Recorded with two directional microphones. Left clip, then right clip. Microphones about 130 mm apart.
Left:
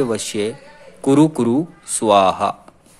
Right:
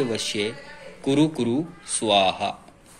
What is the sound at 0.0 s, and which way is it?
A man's voice, 50° left (ahead or behind).